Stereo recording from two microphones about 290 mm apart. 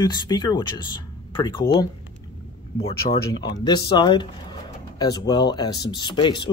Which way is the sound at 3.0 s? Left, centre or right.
Left.